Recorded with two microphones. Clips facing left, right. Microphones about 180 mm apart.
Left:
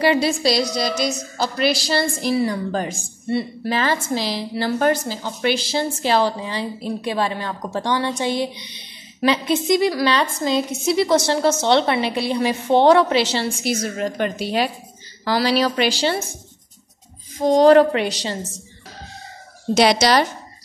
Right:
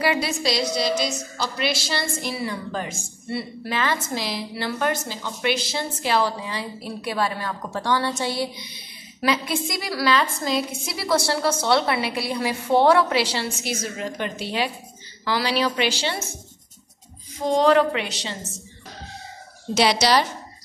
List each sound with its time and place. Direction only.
0.0 s a woman's voice: 30° left (ahead or behind)
3.3 s a woman's voice: 25° left (ahead or behind)
3.7 s a woman's voice: 35° left (ahead or behind)
13.9 s a woman's voice: 45° left (ahead or behind)
17.4 s a woman's voice: 40° left (ahead or behind)
19.8 s a woman's voice: 55° left (ahead or behind)